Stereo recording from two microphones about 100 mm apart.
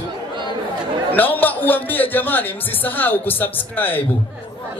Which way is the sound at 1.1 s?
20° left (ahead or behind).